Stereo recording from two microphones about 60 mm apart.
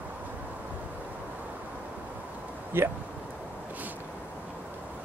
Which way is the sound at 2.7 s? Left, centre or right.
Right.